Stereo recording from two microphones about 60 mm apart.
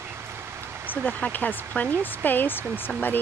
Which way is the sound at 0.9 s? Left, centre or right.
Left.